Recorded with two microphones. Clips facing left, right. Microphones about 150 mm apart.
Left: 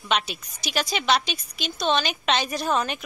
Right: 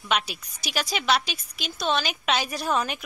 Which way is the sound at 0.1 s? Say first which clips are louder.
Left 1 dB; 10° right (ahead or behind).